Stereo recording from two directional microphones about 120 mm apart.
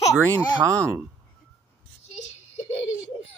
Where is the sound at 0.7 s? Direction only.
25° right (ahead or behind).